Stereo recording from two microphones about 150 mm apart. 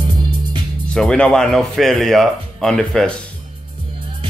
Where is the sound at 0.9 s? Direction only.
5° left (ahead or behind).